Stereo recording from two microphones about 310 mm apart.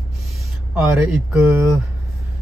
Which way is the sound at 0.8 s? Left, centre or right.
Centre.